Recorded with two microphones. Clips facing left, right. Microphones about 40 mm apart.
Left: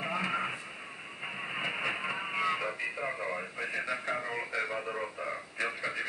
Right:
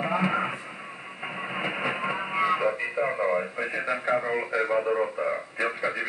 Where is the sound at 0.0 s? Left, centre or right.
Right.